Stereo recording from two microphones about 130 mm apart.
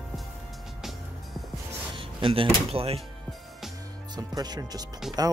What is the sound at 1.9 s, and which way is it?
Speech, 45° right (ahead or behind).